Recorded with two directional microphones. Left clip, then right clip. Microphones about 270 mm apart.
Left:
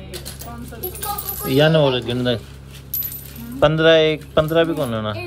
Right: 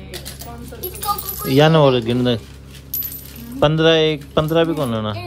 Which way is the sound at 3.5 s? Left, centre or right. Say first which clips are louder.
Left 1 dB; centre.